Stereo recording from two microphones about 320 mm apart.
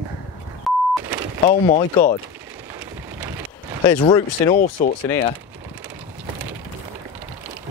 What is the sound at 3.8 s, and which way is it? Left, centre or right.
Speech, centre.